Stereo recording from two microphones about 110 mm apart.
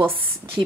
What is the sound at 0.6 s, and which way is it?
Speech, 45° right (ahead or behind).